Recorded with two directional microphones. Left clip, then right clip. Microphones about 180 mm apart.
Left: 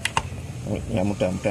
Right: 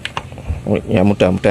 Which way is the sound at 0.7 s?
40° right (ahead or behind).